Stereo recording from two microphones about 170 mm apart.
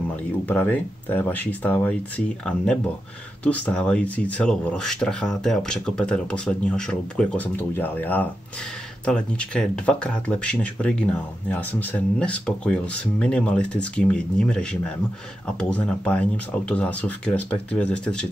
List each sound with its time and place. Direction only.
0.1 s speech: 10° left (ahead or behind)